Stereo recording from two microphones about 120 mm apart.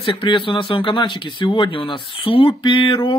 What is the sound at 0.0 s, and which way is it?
Speech, 45° left (ahead or behind).